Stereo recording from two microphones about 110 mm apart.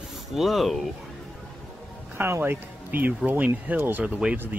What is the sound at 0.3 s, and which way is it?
Speech, centre (ahead or behind).